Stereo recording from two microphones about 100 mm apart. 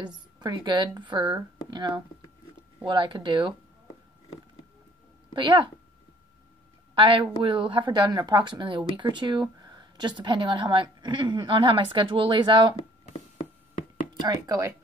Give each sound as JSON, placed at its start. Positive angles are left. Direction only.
{"t": 0.0, "sound": "speech", "side_deg": -45}
{"t": 5.3, "sound": "speech", "side_deg": -55}
{"t": 7.0, "sound": "a woman's voice", "side_deg": -55}
{"t": 14.2, "sound": "speech", "side_deg": -40}